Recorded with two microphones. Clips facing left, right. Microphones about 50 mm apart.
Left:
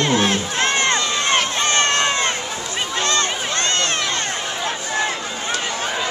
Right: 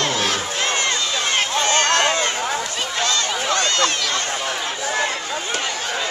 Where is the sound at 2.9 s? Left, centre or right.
Left.